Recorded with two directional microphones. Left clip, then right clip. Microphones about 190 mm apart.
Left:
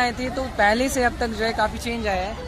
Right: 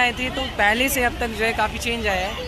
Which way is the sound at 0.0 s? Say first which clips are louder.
Right 2 dB; 50° left (ahead or behind).